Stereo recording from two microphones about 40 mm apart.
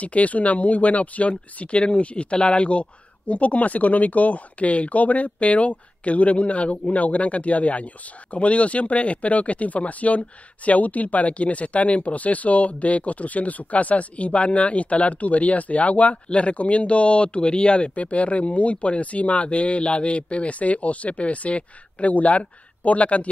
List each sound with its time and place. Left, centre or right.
0.0 s speech: left